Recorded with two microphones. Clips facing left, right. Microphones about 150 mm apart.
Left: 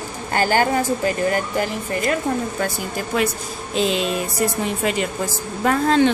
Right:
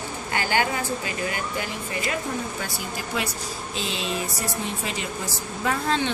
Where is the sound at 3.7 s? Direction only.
55° left (ahead or behind).